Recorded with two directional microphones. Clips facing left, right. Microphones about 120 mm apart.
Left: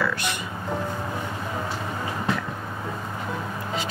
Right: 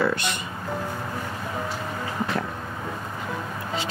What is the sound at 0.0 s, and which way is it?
Music, 25° right (ahead or behind).